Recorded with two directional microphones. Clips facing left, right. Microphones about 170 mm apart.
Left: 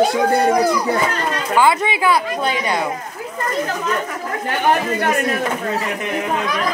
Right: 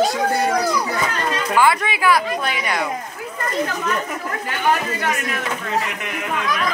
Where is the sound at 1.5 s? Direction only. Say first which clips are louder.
Left 2 dB; 25° left (ahead or behind).